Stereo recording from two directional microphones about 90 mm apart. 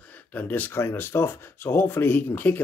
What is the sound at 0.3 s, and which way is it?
Speech, 20° left (ahead or behind).